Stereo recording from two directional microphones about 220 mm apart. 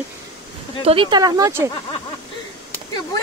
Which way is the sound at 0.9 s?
20° right (ahead or behind).